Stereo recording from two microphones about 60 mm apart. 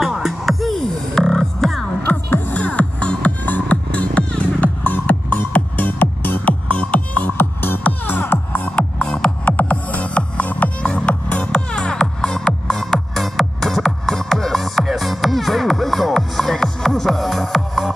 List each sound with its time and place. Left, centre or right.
0.0 s music: centre
2.2 s music: left
2.5 s music: left
4.8 s music: left
6.7 s music: left
7.3 s music: left
8.6 s music: centre
9.4 s music: left; by 17.9 s centre